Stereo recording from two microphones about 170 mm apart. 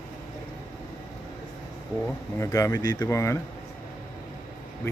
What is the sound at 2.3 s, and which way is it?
Speech, 20° left (ahead or behind).